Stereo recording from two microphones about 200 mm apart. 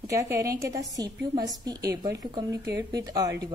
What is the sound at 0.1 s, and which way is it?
A woman's voice, 15° right (ahead or behind).